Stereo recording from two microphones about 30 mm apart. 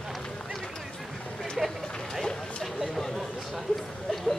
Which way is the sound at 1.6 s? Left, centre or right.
Centre.